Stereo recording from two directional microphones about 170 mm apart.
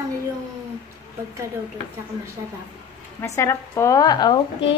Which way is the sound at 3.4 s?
15° left (ahead or behind).